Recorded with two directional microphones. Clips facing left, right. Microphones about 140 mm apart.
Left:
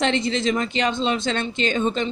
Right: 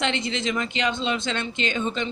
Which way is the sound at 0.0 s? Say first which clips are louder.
Left 5 dB; 35° left (ahead or behind).